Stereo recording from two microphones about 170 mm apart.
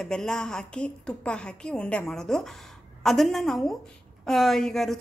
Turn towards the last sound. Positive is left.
turn(degrees=0)  # may be behind; listen again after turning